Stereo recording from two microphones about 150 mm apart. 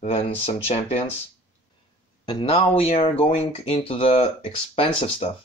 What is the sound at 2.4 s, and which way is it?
Speech, 40° left (ahead or behind).